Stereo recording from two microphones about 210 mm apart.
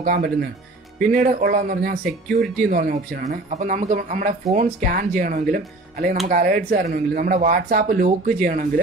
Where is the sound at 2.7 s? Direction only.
40° right (ahead or behind).